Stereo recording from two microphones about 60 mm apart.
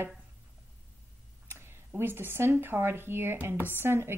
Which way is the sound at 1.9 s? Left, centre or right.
Right.